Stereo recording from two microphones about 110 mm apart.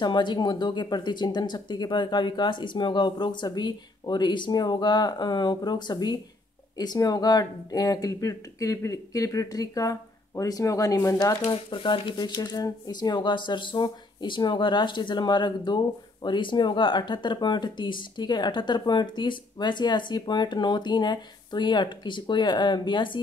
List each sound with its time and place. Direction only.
0.0 s speech: 45° left (ahead or behind)
11.4 s speech: 55° left (ahead or behind)
12.4 s speech: 35° left (ahead or behind)